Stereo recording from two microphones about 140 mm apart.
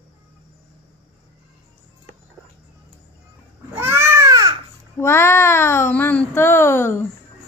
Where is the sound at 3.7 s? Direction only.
15° right (ahead or behind).